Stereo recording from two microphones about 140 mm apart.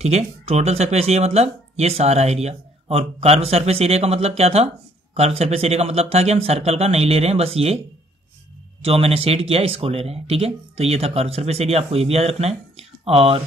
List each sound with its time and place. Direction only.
0.0 s speech: 50° right (ahead or behind)
8.8 s speech: 45° right (ahead or behind)